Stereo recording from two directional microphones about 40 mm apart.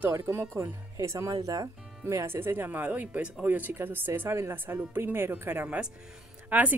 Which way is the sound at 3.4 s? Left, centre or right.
Right.